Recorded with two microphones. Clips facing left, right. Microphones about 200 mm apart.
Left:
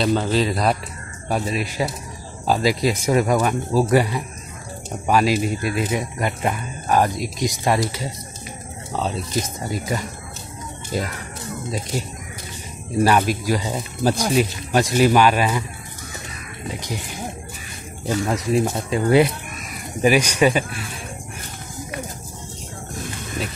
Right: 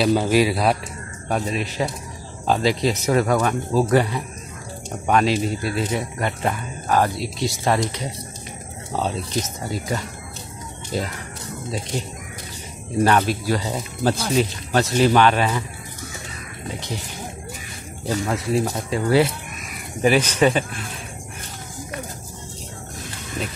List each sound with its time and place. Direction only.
0.0 s speech: 10° right (ahead or behind)
1.3 s speech: 5° left (ahead or behind)
9.4 s speech: 10° left (ahead or behind)
18.2 s speech: 15° left (ahead or behind)